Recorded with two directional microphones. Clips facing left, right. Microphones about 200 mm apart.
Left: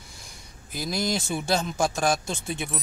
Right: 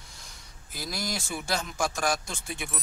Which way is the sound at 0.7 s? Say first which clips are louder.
Left 7 dB; 20° left (ahead or behind).